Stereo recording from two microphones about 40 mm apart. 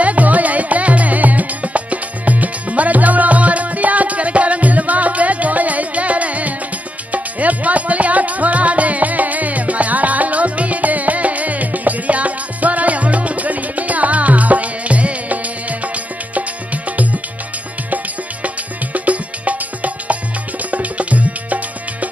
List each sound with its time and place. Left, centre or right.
0.0 s music: right
20.7 s tabla: right